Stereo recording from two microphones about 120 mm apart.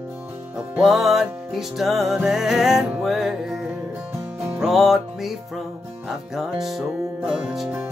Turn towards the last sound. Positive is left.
turn(degrees=-5)  # may be behind; listen again after turning